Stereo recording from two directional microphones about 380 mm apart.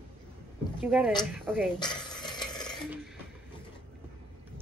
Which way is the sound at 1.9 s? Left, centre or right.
Centre.